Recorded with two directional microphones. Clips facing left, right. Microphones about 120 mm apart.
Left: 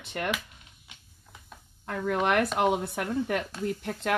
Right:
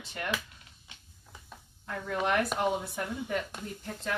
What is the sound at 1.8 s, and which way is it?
Speech, 70° left (ahead or behind).